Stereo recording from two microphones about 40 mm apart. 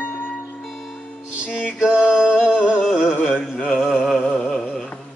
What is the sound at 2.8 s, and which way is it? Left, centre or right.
Music, centre.